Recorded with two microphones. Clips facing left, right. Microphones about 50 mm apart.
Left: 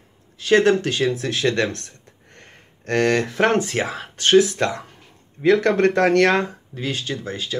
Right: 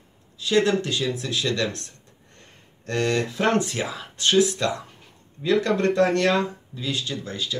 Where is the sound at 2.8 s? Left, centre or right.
Left.